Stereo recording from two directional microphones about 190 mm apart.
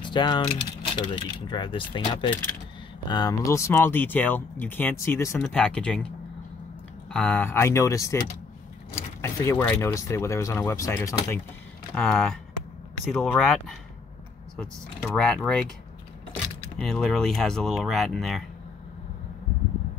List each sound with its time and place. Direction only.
0.0 s speech: 25° left (ahead or behind)
9.2 s speech: 15° left (ahead or behind)
16.8 s speech: centre (ahead or behind)